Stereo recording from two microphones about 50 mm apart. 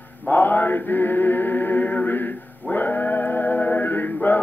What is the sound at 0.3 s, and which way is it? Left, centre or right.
Chant, left.